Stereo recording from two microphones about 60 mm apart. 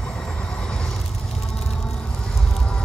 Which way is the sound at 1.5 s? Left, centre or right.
Centre.